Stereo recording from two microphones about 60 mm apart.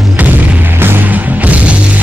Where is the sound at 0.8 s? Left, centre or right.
Right.